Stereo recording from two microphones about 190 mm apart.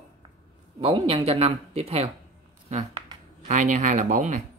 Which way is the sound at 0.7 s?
30° right (ahead or behind).